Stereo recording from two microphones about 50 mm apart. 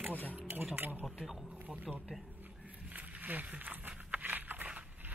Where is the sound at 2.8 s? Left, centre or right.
Right.